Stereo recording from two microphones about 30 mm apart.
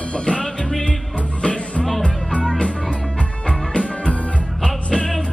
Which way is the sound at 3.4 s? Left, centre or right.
Left.